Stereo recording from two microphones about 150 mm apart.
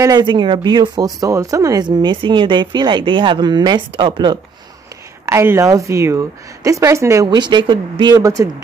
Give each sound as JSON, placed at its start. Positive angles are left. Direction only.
{"t": 0.0, "sound": "speech", "side_deg": -30}
{"t": 5.2, "sound": "speech", "side_deg": -15}